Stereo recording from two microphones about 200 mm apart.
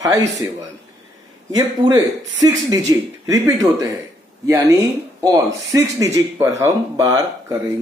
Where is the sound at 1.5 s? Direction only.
20° right (ahead or behind).